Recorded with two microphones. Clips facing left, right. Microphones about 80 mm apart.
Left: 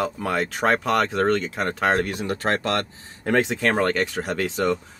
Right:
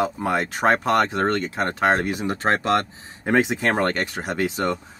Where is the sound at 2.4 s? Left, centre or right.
Right.